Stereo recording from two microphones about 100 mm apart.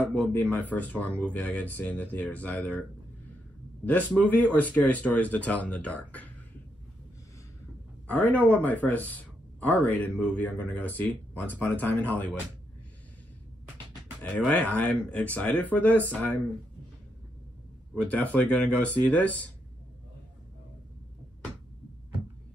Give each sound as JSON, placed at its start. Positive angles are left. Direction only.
{"t": 0.0, "sound": "speech", "side_deg": 15}
{"t": 4.6, "sound": "speech", "side_deg": 15}
{"t": 8.1, "sound": "speech", "side_deg": 15}
{"t": 14.2, "sound": "speech", "side_deg": 15}
{"t": 18.0, "sound": "speech", "side_deg": 15}